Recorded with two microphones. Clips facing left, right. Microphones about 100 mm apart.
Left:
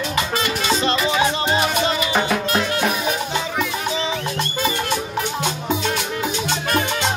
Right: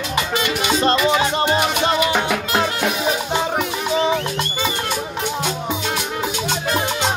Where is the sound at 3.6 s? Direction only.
55° right (ahead or behind).